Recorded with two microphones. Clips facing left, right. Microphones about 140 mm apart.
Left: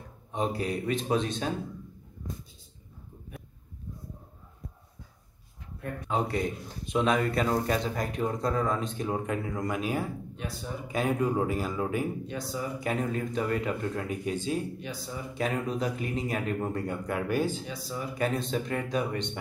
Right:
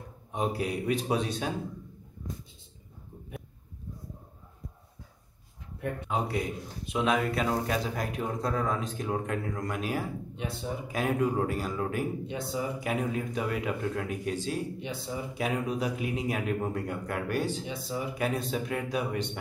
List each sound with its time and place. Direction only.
0.3 s a man's voice: 5° right (ahead or behind)
6.0 s speech: 5° right (ahead or behind)
10.3 s speech: 25° right (ahead or behind)
10.9 s speech: centre (ahead or behind)
12.3 s speech: 20° right (ahead or behind)
12.8 s speech: 5° right (ahead or behind)
14.8 s speech: 25° right (ahead or behind)
15.3 s a man's voice: 10° right (ahead or behind)